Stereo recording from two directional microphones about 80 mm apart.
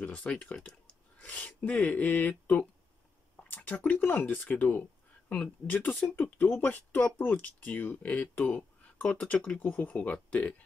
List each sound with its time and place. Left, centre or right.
0.0 s speech: centre